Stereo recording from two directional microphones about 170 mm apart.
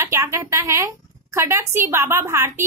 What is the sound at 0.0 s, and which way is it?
A woman's voice, 15° right (ahead or behind).